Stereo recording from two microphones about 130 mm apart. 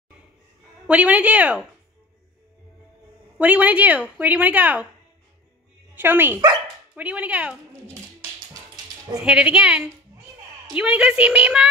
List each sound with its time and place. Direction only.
0.8 s a woman's voice: 10° right (ahead or behind)
3.3 s a woman's voice: 10° right (ahead or behind)
5.9 s a woman's voice: 15° right (ahead or behind)
9.2 s a woman's voice: 5° right (ahead or behind)